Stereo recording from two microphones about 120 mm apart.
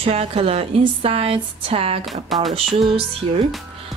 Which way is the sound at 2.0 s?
Centre (ahead or behind).